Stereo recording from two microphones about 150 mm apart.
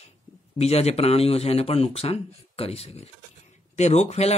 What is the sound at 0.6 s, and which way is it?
Speech, 45° left (ahead or behind).